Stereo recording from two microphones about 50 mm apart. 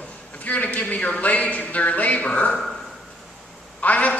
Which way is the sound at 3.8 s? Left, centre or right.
Left.